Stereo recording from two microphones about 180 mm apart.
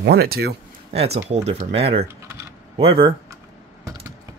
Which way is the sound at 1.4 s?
30° right (ahead or behind).